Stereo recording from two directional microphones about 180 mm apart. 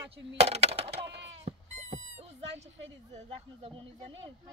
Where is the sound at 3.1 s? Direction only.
30° right (ahead or behind).